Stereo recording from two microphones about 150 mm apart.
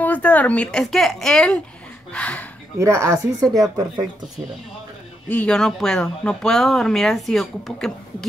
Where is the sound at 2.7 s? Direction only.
20° right (ahead or behind).